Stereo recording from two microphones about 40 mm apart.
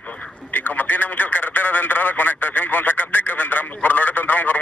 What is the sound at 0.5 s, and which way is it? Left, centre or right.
Speech, left.